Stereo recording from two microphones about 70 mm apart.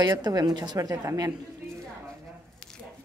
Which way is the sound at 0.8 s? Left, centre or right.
Right.